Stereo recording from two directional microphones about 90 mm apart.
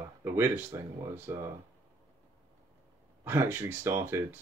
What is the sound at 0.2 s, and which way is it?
Speech, 25° right (ahead or behind).